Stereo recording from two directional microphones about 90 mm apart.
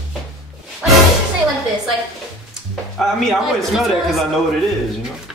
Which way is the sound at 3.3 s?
Centre (ahead or behind).